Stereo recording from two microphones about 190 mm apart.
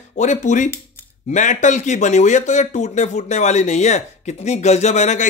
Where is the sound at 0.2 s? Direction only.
40° left (ahead or behind).